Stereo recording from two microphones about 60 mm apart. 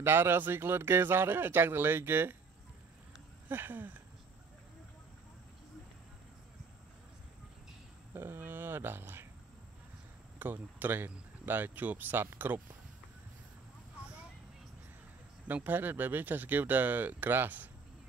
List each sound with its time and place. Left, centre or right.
0.0 s speech: right
3.4 s speech: right
8.1 s a sound: right
10.4 s speech: right
15.4 s speech: right